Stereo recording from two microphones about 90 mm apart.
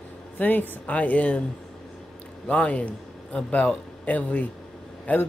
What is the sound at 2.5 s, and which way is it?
Speech, 15° left (ahead or behind).